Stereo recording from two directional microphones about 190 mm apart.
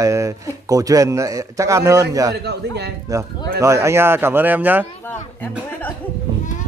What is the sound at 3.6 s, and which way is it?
Speech, 15° right (ahead or behind).